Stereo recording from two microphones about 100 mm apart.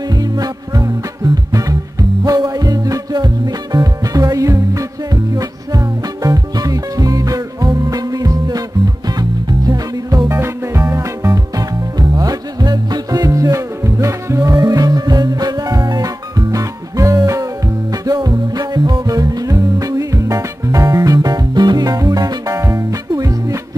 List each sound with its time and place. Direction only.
0.2 s music: 40° right (ahead or behind)
10.2 s music: 25° right (ahead or behind)